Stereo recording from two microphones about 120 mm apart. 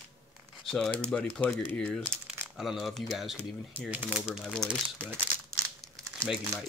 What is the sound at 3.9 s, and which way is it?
Speech, 15° right (ahead or behind).